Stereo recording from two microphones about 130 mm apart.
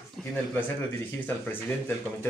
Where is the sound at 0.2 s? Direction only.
5° left (ahead or behind).